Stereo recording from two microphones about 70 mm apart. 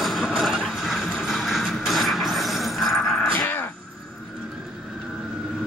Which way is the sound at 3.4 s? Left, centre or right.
Left.